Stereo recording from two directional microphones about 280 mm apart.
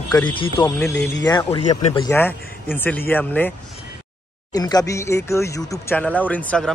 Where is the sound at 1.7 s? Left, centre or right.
Left.